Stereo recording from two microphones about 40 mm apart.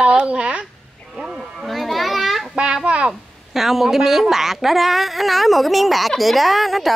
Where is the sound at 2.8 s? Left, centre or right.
Right.